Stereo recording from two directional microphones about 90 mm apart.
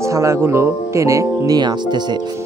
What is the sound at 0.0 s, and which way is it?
Speech, 35° right (ahead or behind).